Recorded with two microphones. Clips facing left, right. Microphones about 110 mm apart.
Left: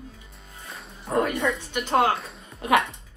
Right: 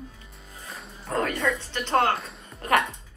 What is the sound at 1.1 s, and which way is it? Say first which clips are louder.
Speech: left 2 dB; 15° left (ahead or behind).